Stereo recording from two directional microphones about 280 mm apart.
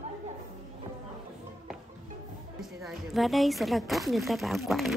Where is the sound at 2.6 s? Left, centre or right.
Centre.